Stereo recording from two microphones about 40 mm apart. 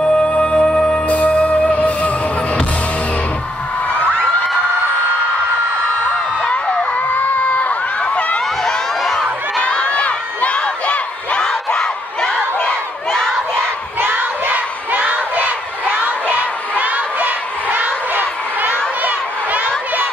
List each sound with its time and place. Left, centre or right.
0.0 s music: left
1.0 s music: left
6.4 s a sound: left
7.1 s a sound: left
9.6 s crowd: left
11.4 s crowd: centre
14.5 s crowd: right